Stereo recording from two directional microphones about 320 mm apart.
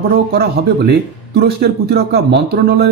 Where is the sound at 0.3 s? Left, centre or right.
Right.